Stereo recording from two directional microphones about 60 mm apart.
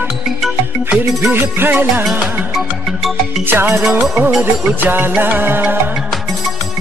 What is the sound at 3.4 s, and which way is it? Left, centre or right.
Music, right.